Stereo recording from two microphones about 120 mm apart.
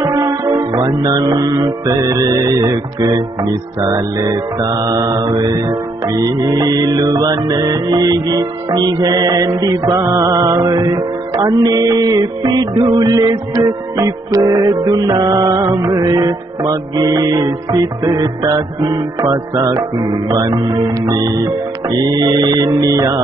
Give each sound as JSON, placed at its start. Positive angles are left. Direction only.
{"t": 0.0, "sound": "music", "side_deg": -35}
{"t": 3.9, "sound": "music", "side_deg": -30}
{"t": 14.4, "sound": "music", "side_deg": -40}
{"t": 22.1, "sound": "music", "side_deg": -35}